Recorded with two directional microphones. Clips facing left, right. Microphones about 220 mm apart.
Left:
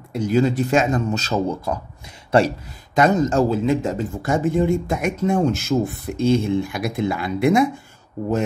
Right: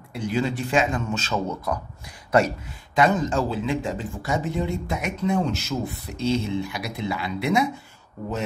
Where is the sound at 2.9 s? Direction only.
45° left (ahead or behind).